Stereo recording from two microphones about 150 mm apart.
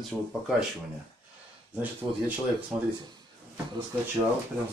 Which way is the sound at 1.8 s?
10° right (ahead or behind).